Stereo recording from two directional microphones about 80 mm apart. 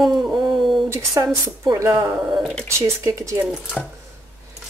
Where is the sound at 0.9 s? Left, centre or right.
Right.